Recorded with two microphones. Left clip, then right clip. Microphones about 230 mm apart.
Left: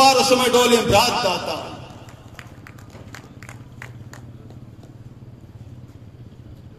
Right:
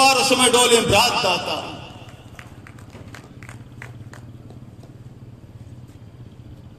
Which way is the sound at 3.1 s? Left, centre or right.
Centre.